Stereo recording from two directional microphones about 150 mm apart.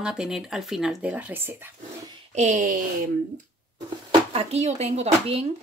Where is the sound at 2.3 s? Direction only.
50° right (ahead or behind).